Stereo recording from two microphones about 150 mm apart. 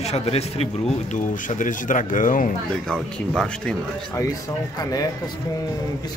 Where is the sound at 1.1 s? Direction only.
60° left (ahead or behind).